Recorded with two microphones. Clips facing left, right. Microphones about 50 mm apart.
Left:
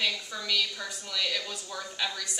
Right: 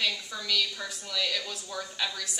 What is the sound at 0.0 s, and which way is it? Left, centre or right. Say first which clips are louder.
Speech: even; centre.